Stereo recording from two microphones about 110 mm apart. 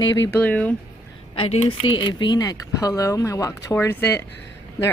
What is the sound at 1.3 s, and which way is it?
Speech, 60° left (ahead or behind).